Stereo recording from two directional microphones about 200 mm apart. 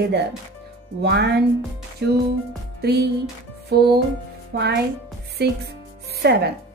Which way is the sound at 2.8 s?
55° right (ahead or behind).